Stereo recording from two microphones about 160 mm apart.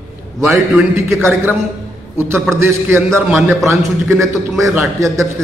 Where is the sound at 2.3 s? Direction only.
15° right (ahead or behind).